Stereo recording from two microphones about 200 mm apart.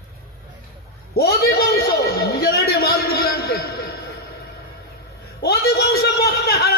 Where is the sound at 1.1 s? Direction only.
50° left (ahead or behind).